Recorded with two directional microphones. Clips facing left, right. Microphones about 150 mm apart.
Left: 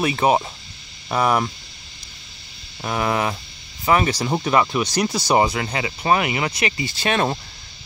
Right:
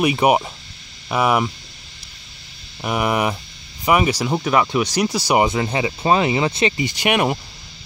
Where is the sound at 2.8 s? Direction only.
15° right (ahead or behind).